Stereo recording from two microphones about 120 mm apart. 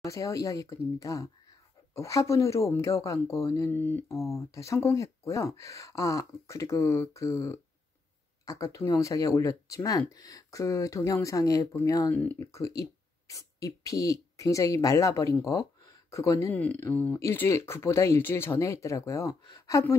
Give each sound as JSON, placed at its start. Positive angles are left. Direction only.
{"t": 0.0, "sound": "speech", "side_deg": 25}
{"t": 4.4, "sound": "speech", "side_deg": 25}
{"t": 12.1, "sound": "speech", "side_deg": 15}
{"t": 12.4, "sound": "speech", "side_deg": 25}
{"t": 16.5, "sound": "speech", "side_deg": 15}